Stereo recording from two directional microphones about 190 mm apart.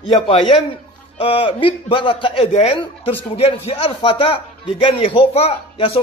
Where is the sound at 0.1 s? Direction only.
30° left (ahead or behind).